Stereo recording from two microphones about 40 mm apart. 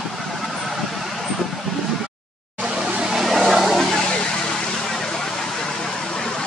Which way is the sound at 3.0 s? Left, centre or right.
Centre.